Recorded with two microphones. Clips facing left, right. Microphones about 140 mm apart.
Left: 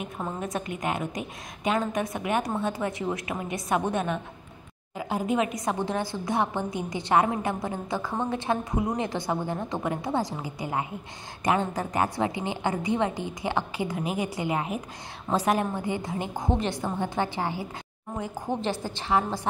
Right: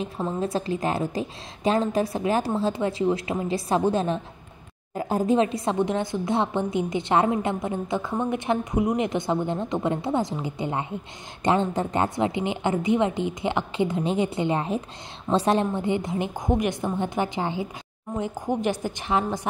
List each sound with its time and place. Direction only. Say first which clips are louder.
0.0 s a woman's voice: right 5 dB; 30° right (ahead or behind)
4.9 s a woman's voice: right 5 dB; 40° right (ahead or behind); by 19.4 s 20° right (ahead or behind)